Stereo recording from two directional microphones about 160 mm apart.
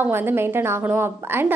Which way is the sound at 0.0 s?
10° right (ahead or behind).